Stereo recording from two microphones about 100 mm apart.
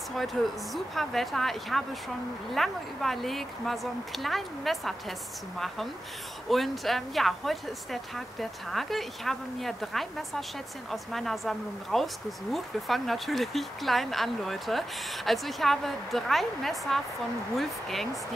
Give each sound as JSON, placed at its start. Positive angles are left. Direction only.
{"t": 0.1, "sound": "speech", "side_deg": 0}
{"t": 6.5, "sound": "speech", "side_deg": 0}